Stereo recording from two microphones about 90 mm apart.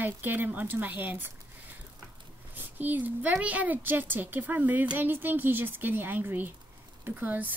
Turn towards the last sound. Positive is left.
turn(degrees=-20)  # may be behind; listen again after turning